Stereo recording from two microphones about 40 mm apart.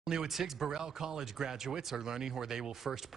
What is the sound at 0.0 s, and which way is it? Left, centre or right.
Speech, centre.